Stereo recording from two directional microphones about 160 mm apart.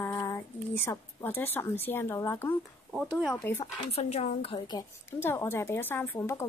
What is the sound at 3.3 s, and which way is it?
Speech, 15° left (ahead or behind).